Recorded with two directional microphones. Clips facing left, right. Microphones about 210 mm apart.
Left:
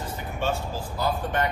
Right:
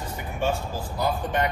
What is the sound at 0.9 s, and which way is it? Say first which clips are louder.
Speech: right 1 dB; 15° right (ahead or behind).